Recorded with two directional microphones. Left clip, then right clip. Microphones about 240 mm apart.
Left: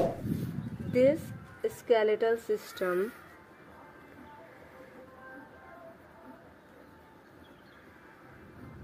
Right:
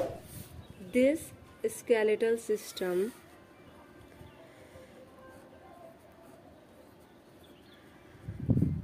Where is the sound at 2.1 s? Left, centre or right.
Centre.